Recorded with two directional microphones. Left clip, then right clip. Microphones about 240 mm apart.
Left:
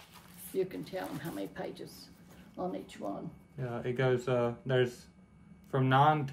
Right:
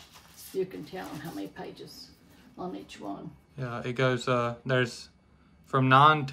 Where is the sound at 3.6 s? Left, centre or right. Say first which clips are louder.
Right 4 dB; centre.